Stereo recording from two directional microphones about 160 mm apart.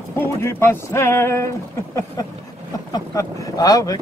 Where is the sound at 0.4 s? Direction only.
15° left (ahead or behind).